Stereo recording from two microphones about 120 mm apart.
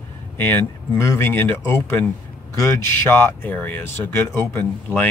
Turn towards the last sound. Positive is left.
turn(degrees=15)  # may be behind; listen again after turning